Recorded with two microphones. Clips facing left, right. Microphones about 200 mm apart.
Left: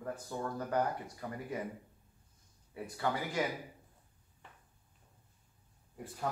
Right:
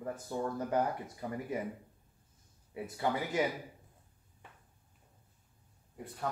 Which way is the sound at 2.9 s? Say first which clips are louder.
Right 2 dB; 20° right (ahead or behind).